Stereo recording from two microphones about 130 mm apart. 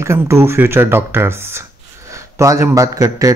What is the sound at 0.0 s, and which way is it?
Speech, 20° right (ahead or behind).